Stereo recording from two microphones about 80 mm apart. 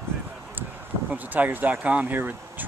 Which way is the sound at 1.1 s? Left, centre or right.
Right.